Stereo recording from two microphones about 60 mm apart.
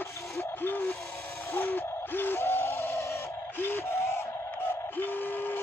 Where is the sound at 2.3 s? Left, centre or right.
Left.